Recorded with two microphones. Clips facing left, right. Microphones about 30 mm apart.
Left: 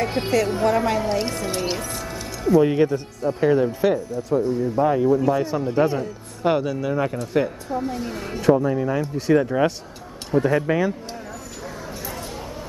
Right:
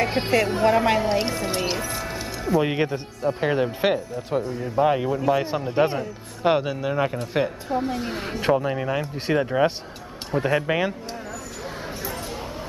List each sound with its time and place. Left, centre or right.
0.0 s speech: right
1.0 s speech: centre
1.7 s music: centre
2.6 s speech: right
5.1 s speech: right